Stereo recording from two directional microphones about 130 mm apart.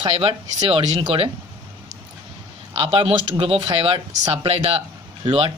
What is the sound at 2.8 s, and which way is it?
Speech, 45° right (ahead or behind).